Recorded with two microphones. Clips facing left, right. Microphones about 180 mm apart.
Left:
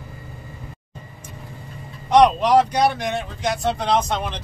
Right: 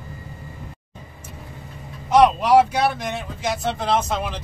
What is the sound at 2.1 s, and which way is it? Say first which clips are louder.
Speech: even; 5° right (ahead or behind).